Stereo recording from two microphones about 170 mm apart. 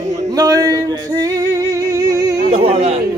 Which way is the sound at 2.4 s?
35° right (ahead or behind).